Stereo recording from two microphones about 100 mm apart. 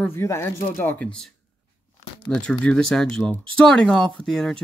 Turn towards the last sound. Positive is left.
turn(degrees=5)  # may be behind; listen again after turning